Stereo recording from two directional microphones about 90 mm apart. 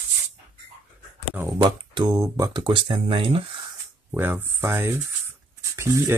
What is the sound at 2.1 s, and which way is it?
Speech, 45° right (ahead or behind).